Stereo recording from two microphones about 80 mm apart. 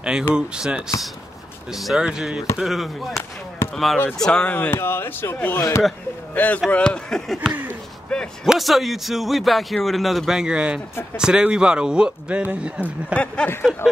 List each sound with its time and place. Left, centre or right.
0.3 s a man's voice: centre
4.6 s speech: left
5.6 s speech: left
6.3 s a man's voice: left; by 12.9 s centre
13.1 s speech: centre